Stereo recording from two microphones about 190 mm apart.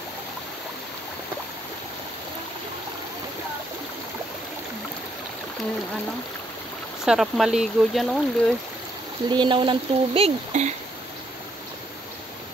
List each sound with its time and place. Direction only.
7.1 s speech: centre (ahead or behind)
9.3 s speech: 25° right (ahead or behind)